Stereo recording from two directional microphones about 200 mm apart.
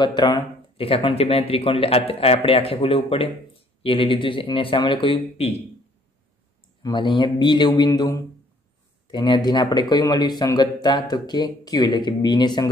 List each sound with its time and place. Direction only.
0.0 s speech: 20° left (ahead or behind)
6.8 s speech: 25° left (ahead or behind)